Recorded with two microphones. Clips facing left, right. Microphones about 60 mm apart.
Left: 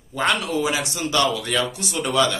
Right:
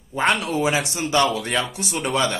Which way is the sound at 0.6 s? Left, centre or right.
Right.